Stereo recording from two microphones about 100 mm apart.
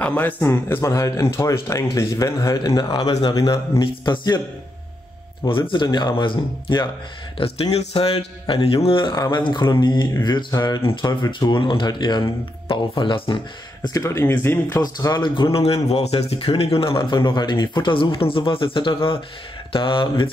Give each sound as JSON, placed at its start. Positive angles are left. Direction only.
{"t": 0.0, "sound": "a man's voice", "side_deg": 15}
{"t": 3.8, "sound": "speech", "side_deg": 50}
{"t": 5.5, "sound": "speech", "side_deg": 60}
{"t": 7.3, "sound": "speech", "side_deg": 80}
{"t": 9.3, "sound": "speech", "side_deg": 50}
{"t": 13.9, "sound": "speech", "side_deg": 30}
{"t": 14.8, "sound": "speech", "side_deg": 45}